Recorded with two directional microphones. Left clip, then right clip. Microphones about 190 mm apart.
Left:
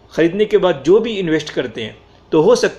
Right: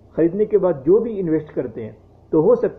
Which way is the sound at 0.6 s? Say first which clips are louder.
Left 3 dB; 35° left (ahead or behind).